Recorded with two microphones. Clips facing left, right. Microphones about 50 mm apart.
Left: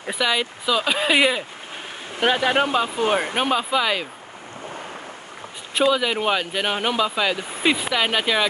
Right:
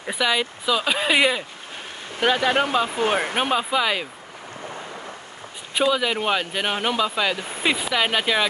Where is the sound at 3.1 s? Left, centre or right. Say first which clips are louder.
Left 1 dB; centre.